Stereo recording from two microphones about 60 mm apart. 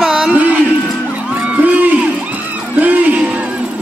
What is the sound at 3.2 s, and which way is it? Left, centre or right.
Music, right.